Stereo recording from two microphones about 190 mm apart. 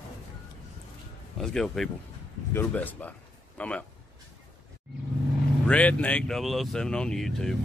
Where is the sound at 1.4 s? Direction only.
5° left (ahead or behind).